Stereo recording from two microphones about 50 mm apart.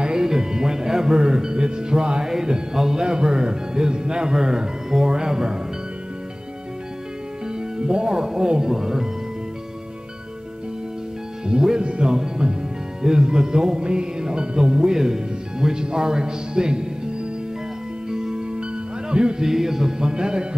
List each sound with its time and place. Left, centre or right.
0.0 s speech: centre
7.8 s speech: centre
11.4 s speech: centre
13.0 s music: centre